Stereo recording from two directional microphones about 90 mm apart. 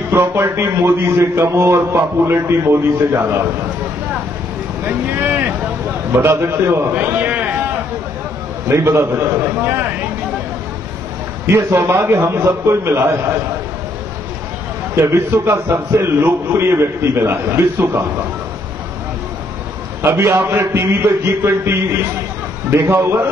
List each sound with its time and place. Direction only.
0.1 s a man's voice: 30° right (ahead or behind)
4.8 s a man's voice: 20° right (ahead or behind)
8.7 s a man's voice: 30° right (ahead or behind)
11.5 s a man's voice: 30° right (ahead or behind)
15.1 s a man's voice: 30° right (ahead or behind)
20.0 s a man's voice: 30° right (ahead or behind)